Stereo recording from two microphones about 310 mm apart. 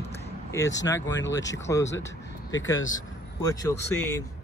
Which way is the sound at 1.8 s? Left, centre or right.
Left.